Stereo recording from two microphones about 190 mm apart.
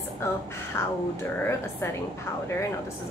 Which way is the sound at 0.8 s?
15° left (ahead or behind).